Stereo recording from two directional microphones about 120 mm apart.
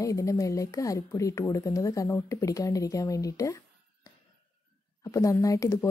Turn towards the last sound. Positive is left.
turn(degrees=25)  # may be behind; listen again after turning